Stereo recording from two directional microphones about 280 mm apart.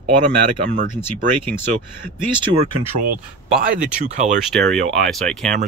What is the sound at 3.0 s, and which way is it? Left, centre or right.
Speech, right.